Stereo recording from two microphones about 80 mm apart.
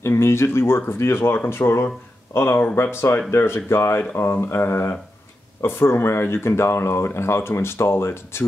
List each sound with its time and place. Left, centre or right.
0.0 s speech: left